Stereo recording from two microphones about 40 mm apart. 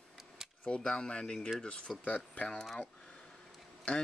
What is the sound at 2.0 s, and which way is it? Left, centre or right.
Speech, left.